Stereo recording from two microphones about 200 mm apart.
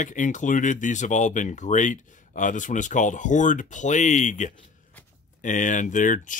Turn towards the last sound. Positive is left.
turn(degrees=40)  # may be behind; listen again after turning